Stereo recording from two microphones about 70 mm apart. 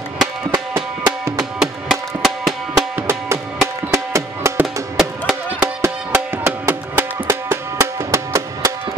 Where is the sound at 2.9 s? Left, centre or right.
Right.